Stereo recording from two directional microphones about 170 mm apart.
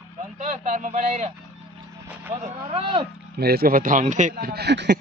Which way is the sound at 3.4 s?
65° right (ahead or behind).